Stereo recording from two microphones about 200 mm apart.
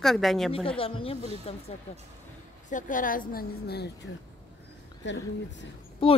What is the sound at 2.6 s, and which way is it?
A woman's voice, 40° left (ahead or behind).